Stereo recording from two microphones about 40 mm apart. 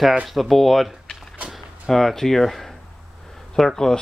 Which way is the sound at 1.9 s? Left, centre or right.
Centre.